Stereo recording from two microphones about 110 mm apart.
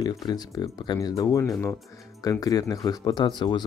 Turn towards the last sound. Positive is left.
turn(degrees=40)  # may be behind; listen again after turning